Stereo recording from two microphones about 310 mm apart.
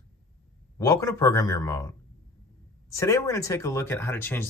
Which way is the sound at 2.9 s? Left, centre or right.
Centre.